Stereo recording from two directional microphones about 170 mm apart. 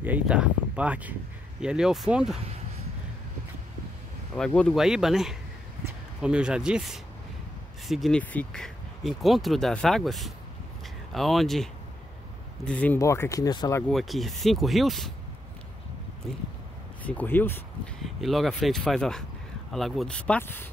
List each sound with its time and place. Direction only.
0.0 s speech: 10° right (ahead or behind)
4.4 s speech: 5° left (ahead or behind); by 13.8 s 20° left (ahead or behind)
13.8 s speech: centre (ahead or behind)
17.0 s speech: 10° left (ahead or behind)
18.0 s speech: centre (ahead or behind)